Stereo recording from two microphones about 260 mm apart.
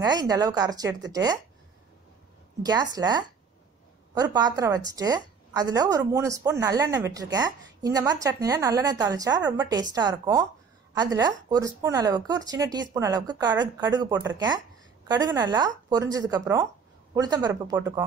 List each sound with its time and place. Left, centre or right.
0.0 s a woman's voice: centre
2.6 s a woman's voice: centre